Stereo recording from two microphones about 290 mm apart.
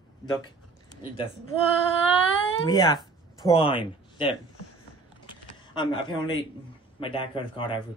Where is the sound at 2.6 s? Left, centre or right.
Centre.